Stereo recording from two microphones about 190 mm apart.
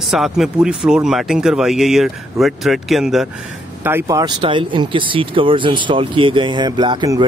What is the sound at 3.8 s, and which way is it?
Speech, 15° right (ahead or behind).